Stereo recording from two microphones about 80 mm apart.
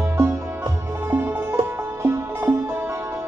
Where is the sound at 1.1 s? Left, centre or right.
Right.